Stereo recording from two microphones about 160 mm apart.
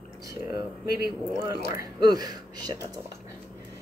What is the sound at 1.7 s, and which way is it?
Speech, 25° right (ahead or behind).